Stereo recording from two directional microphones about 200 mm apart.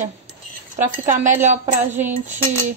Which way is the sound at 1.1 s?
40° right (ahead or behind).